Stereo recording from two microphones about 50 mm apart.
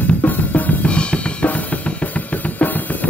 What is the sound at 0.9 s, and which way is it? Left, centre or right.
Drum kit, left.